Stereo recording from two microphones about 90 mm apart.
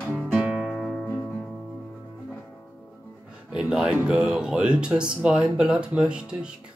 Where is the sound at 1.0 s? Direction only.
20° left (ahead or behind).